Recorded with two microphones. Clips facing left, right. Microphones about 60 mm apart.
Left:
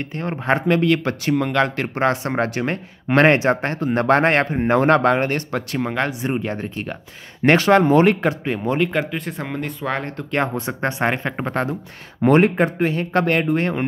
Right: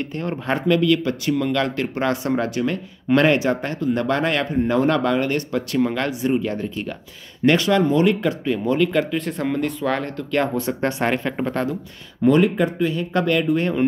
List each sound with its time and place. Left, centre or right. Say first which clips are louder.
0.0 s speech: even; left
5.8 s speech: right 1 dB; left
6.2 s speech: right 2 dB; left
8.6 s speech: right 1 dB; left; by 9.8 s centre
9.8 s speech: right 2 dB; left
12.2 s speech: left 1 dB; left